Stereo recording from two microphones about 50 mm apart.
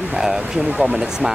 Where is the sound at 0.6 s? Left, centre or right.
Right.